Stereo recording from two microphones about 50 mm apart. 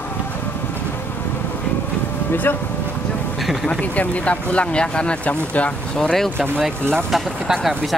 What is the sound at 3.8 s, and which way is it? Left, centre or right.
Speech, left.